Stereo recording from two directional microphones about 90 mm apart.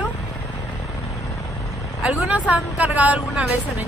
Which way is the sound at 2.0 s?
15° right (ahead or behind).